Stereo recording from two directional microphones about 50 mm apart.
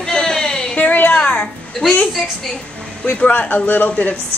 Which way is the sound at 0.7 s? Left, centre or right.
Left.